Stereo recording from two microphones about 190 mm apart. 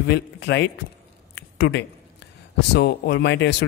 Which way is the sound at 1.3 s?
65° left (ahead or behind).